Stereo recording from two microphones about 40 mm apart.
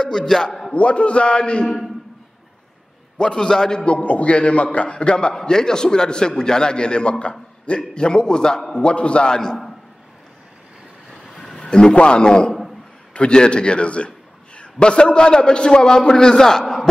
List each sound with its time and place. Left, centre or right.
0.0 s a man's voice: centre
0.7 s a man's voice: left
3.2 s a man's voice: left
11.3 s a sound: centre
11.7 s a man's voice: left